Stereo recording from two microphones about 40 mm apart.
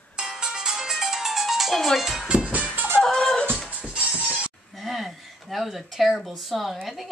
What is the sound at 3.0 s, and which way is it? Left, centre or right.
Music, centre.